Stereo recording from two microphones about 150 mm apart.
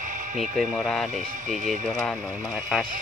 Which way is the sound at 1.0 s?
60° right (ahead or behind).